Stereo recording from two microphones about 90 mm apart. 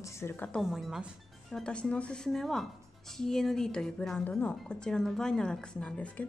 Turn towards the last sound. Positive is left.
turn(degrees=15)  # may be behind; listen again after turning